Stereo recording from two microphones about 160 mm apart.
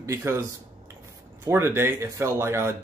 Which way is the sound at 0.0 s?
15° right (ahead or behind).